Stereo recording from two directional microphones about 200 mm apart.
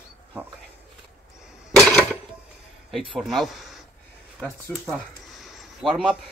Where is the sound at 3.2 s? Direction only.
Centre (ahead or behind).